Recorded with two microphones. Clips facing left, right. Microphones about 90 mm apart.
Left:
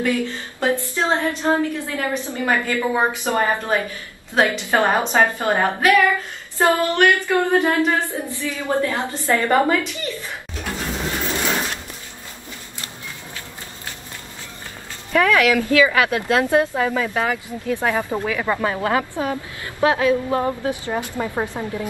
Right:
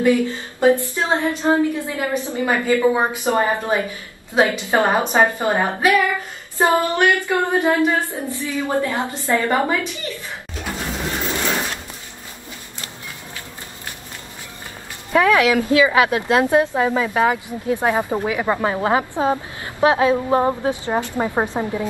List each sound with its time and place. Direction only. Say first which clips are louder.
0.0 s a woman's voice: right 5 dB; 20° right (ahead or behind)
10.6 s a sound: even; 10° right (ahead or behind)
15.1 s a woman's voice: right 1 dB; 20° right (ahead or behind)